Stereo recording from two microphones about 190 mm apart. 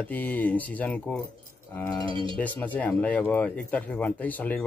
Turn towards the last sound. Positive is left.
turn(degrees=10)  # may be behind; listen again after turning